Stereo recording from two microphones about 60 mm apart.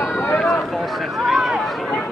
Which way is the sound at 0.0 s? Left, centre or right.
Centre.